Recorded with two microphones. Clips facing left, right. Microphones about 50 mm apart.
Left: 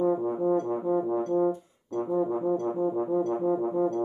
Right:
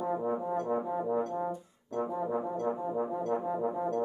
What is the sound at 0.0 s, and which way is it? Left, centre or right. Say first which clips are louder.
Brass instrument: left 6 dB; centre.